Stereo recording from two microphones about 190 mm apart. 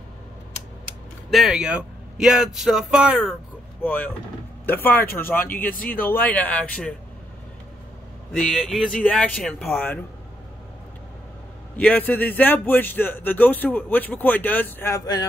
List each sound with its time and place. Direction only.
1.3 s speech: centre (ahead or behind)
3.8 s speech: 10° left (ahead or behind)
5.5 s speech: 50° left (ahead or behind)
5.9 s speech: 10° left (ahead or behind)
8.3 s speech: centre (ahead or behind)
11.7 s speech: 10° left (ahead or behind)